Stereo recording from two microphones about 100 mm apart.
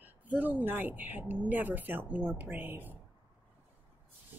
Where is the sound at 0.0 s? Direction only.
15° right (ahead or behind).